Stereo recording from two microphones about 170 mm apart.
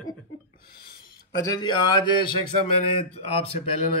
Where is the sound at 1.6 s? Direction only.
25° left (ahead or behind).